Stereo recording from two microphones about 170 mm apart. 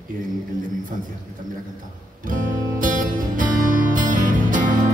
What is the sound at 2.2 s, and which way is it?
Music, 50° right (ahead or behind).